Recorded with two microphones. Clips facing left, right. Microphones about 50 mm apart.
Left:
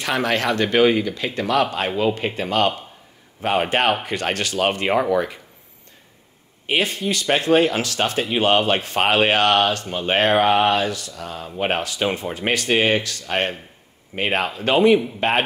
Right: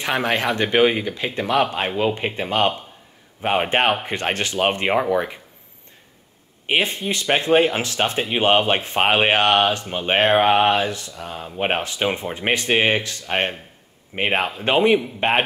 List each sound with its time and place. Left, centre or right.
0.0 s speech: right
6.7 s a man's voice: right